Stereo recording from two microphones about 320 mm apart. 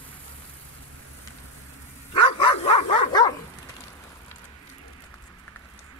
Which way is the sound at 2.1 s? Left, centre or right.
Centre.